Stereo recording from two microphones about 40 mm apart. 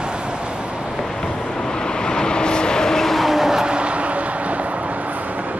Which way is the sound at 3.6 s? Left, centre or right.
Right.